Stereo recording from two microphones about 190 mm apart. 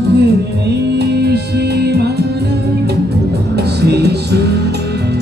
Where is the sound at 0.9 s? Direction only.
60° right (ahead or behind).